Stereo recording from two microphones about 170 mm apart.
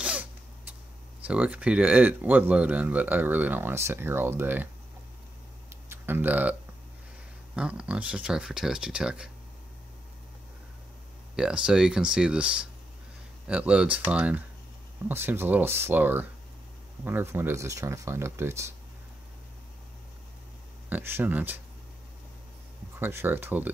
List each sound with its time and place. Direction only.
0.0 s a sound: 10° right (ahead or behind)
1.2 s speech: 10° right (ahead or behind)
5.9 s speech: 10° right (ahead or behind)
7.5 s speech: 5° right (ahead or behind)
11.3 s speech: 5° right (ahead or behind)
20.9 s speech: 10° right (ahead or behind)
22.9 s speech: 15° right (ahead or behind)